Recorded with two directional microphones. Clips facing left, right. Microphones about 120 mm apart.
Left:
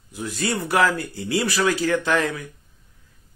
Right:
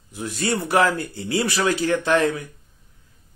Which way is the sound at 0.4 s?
25° right (ahead or behind).